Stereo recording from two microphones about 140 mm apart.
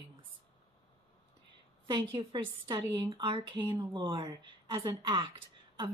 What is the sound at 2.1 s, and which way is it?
A woman's voice, 30° right (ahead or behind).